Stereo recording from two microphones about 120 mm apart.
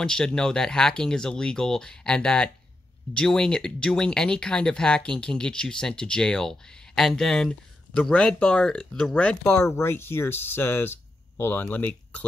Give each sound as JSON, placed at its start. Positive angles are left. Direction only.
{"t": 0.0, "sound": "speech", "side_deg": 5}